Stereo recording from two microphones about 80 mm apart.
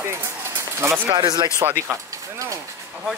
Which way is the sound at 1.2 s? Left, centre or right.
Right.